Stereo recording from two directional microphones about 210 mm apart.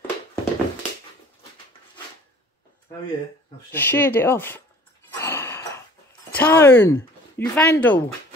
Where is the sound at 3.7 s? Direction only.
10° left (ahead or behind).